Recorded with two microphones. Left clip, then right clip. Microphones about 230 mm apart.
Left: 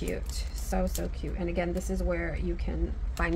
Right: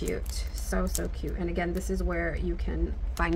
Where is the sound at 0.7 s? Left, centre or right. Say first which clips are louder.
Even; centre.